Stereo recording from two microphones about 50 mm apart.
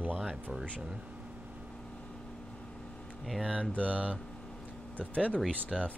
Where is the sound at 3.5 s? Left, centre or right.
Left.